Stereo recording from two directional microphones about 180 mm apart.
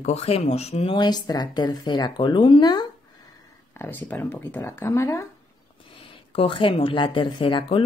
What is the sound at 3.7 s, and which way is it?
Speech, 10° left (ahead or behind).